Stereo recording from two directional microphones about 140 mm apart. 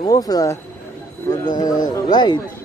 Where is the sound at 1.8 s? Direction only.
30° left (ahead or behind).